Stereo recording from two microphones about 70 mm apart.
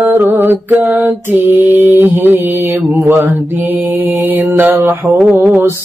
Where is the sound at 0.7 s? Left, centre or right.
Right.